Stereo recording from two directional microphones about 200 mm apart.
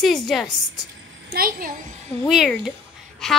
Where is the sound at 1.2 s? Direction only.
45° right (ahead or behind).